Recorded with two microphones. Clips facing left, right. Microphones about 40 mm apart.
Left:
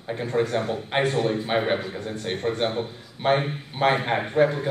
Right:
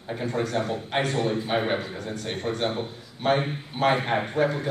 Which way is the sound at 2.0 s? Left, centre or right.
Left.